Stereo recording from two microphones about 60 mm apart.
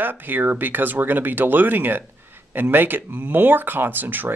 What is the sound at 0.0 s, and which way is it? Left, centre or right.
Speech, right.